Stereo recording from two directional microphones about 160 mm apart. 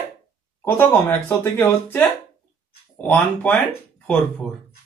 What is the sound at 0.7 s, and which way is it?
Speech, 15° left (ahead or behind).